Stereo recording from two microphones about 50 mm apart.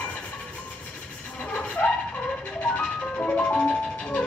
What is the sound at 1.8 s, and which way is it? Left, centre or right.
Dog, left.